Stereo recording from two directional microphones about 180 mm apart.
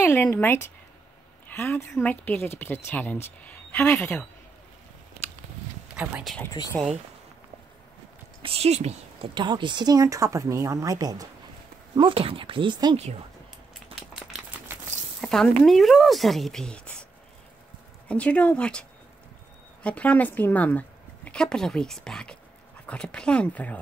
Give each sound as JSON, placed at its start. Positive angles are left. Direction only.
{"t": 0.0, "sound": "speech", "side_deg": 15}
{"t": 5.9, "sound": "speech", "side_deg": -5}
{"t": 6.7, "sound": "speech", "side_deg": 5}
{"t": 8.4, "sound": "speech", "side_deg": -35}
{"t": 13.9, "sound": "a sound", "side_deg": 0}
{"t": 15.6, "sound": "speech", "side_deg": 0}
{"t": 18.0, "sound": "a woman's voice", "side_deg": 5}